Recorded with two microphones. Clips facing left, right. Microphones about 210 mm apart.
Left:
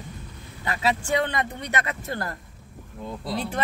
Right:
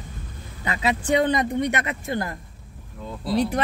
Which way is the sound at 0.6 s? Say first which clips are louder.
Right 1 dB; 20° right (ahead or behind).